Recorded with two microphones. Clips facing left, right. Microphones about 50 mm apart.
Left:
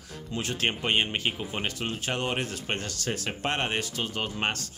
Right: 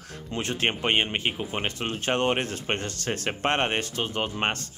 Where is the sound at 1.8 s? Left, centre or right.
Right.